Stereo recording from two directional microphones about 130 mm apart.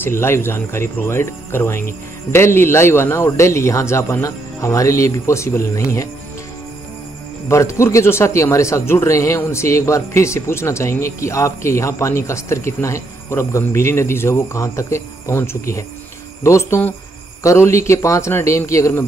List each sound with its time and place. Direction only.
0.0 s speech: 20° left (ahead or behind)
7.4 s speech: 20° left (ahead or behind)